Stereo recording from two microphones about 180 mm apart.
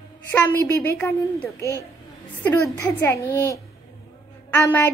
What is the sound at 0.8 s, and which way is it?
Speech, 15° left (ahead or behind).